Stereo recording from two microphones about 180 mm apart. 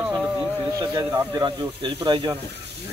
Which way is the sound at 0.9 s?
25° right (ahead or behind).